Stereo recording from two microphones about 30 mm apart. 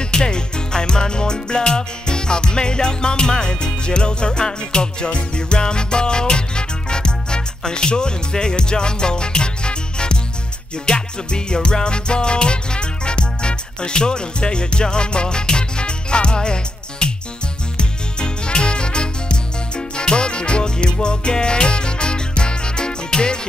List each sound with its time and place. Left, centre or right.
0.0 s music: left